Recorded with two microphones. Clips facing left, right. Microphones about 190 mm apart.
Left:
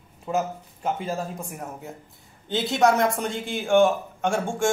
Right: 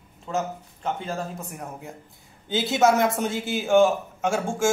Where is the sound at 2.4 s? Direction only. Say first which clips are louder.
Even; centre (ahead or behind).